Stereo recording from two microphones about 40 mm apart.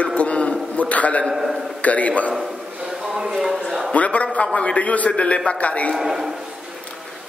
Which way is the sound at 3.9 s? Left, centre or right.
Left.